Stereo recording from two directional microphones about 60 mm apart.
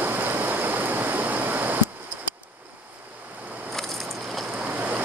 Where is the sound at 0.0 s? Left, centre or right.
Right.